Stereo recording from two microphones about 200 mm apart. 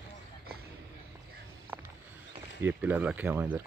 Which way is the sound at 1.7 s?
10° right (ahead or behind).